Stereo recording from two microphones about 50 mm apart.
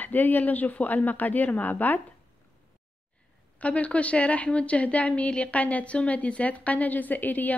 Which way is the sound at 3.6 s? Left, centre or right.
Left.